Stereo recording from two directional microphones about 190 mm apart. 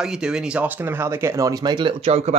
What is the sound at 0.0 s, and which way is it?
Speech, 5° right (ahead or behind).